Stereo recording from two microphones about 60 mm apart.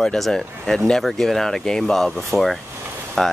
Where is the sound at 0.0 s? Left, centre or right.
Centre.